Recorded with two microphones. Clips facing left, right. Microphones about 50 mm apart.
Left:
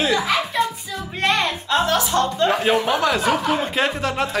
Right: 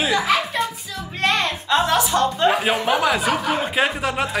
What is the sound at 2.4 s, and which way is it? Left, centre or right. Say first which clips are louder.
Speech: left 1 dB; centre.